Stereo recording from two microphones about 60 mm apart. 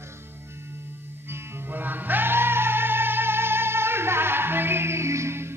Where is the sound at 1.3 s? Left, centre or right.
Right.